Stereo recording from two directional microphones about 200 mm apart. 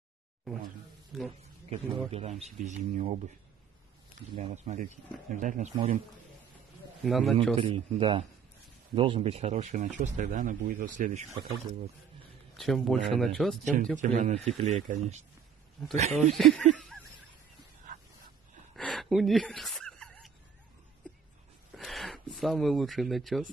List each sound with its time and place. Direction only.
1.1 s speech: centre (ahead or behind)
1.7 s speech: 30° right (ahead or behind)
4.4 s speech: 35° right (ahead or behind)
7.0 s a man's voice: centre (ahead or behind)
7.5 s a man's voice: 25° right (ahead or behind)
12.5 s speech: centre (ahead or behind)
13.9 s speech: 35° right (ahead or behind)
16.1 s speech: centre (ahead or behind)
16.7 s a sound: 5° left (ahead or behind)
18.8 s gasp: centre (ahead or behind)
21.7 s speech: centre (ahead or behind)